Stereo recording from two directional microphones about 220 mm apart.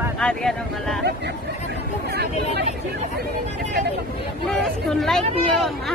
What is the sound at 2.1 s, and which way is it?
Speech, 45° right (ahead or behind).